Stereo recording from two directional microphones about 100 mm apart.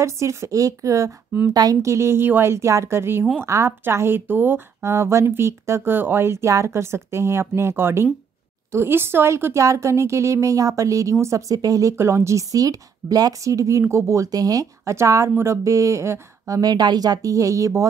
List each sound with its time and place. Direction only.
0.0 s a woman's voice: 30° right (ahead or behind)